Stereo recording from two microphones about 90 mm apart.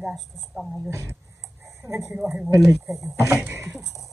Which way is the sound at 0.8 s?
30° right (ahead or behind).